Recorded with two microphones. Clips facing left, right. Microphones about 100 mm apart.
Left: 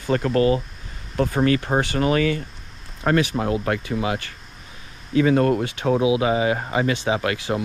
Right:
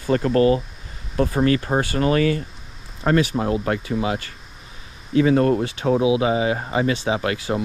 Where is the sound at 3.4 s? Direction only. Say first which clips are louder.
Right 1 dB; 30° right (ahead or behind).